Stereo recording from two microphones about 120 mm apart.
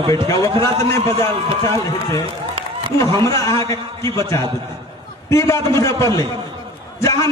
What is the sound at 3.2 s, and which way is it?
A man's voice, 25° left (ahead or behind).